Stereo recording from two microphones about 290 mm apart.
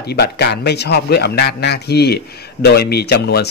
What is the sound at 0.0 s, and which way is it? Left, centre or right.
Speech, left.